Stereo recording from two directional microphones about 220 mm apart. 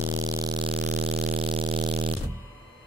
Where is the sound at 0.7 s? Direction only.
45° right (ahead or behind).